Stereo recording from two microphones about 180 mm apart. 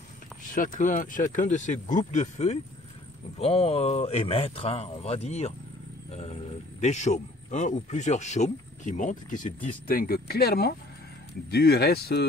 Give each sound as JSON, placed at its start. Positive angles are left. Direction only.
{"t": 0.5, "sound": "speech", "side_deg": 45}